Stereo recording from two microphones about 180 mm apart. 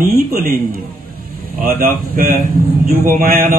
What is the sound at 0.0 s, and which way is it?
A man's voice, 55° right (ahead or behind).